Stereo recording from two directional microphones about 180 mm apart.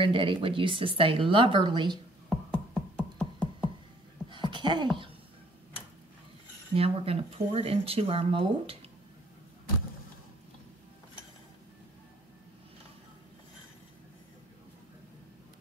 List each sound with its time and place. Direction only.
0.0 s speech: 30° right (ahead or behind)
2.2 s music: 5° left (ahead or behind)
4.3 s a sound: 25° right (ahead or behind)
6.7 s speech: 35° right (ahead or behind)